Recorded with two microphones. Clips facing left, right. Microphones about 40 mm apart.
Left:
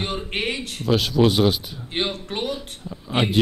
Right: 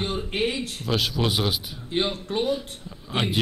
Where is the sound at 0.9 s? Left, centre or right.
Centre.